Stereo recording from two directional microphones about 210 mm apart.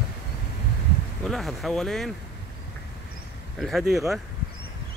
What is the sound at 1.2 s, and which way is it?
Speech, centre (ahead or behind).